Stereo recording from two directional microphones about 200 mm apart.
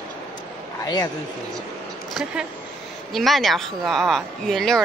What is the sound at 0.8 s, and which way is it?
Speech, 20° left (ahead or behind).